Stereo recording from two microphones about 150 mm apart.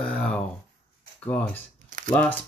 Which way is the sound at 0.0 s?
5° left (ahead or behind).